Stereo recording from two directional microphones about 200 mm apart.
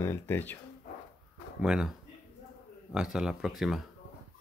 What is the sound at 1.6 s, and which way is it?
Speech, 5° right (ahead or behind).